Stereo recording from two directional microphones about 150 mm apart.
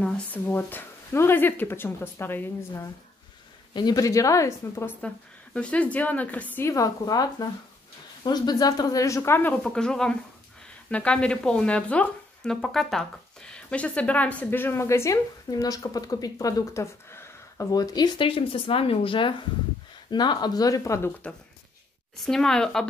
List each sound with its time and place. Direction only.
0.0 s a woman's voice: 10° left (ahead or behind)
22.2 s speech: 5° left (ahead or behind)